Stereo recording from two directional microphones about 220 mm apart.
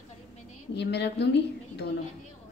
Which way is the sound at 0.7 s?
50° left (ahead or behind).